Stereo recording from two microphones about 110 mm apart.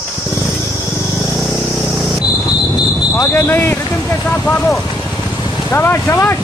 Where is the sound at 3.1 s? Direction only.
20° left (ahead or behind).